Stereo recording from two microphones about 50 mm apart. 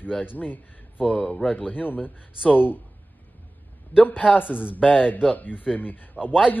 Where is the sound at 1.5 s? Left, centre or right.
Left.